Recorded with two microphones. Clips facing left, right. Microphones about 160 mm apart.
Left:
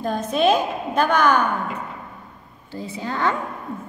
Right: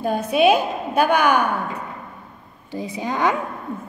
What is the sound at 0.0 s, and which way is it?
Speech, 10° right (ahead or behind).